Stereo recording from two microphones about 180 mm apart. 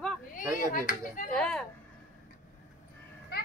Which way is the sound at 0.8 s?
45° left (ahead or behind).